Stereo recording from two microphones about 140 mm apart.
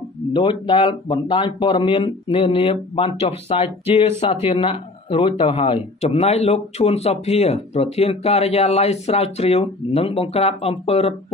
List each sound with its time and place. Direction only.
0.3 s speech: 35° left (ahead or behind)